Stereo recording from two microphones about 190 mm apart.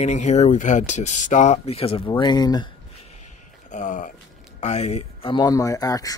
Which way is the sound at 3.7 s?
45° left (ahead or behind).